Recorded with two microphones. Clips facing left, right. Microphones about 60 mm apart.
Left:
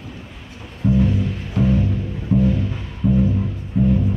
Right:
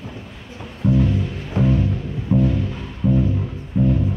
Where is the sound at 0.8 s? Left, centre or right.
Centre.